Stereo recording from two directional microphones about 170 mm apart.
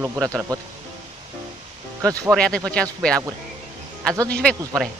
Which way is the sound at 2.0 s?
20° right (ahead or behind).